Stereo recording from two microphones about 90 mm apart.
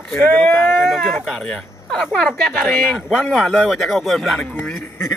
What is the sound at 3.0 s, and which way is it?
Speech, 5° left (ahead or behind).